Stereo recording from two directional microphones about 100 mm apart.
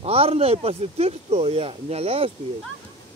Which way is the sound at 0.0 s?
80° right.